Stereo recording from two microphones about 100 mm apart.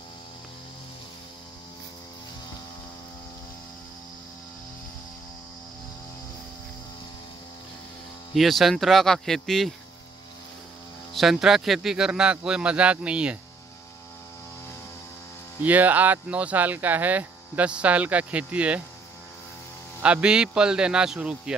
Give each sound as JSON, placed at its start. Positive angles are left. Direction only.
{"t": 8.4, "sound": "speech", "side_deg": 0}
{"t": 11.1, "sound": "speech", "side_deg": 0}
{"t": 15.6, "sound": "speech", "side_deg": -15}
{"t": 20.0, "sound": "speech", "side_deg": -10}